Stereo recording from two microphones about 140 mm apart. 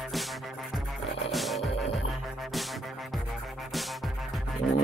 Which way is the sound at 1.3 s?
Centre (ahead or behind).